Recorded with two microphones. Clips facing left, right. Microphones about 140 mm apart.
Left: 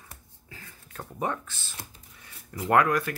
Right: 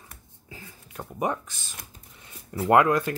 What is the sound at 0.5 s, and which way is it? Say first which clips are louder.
Speech: right 2 dB; 15° right (ahead or behind).